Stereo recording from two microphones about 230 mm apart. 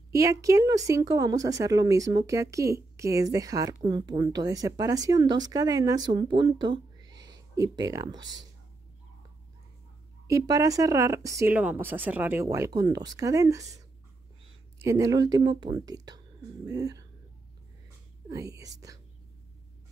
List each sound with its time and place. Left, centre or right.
0.1 s a woman's voice: centre
10.2 s a woman's voice: centre
18.3 s a woman's voice: centre